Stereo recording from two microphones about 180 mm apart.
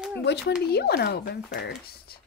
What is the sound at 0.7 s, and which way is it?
Speech, 60° left (ahead or behind).